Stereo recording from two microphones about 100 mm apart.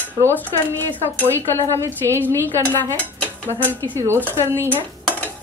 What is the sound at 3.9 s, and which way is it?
Speech, 25° right (ahead or behind).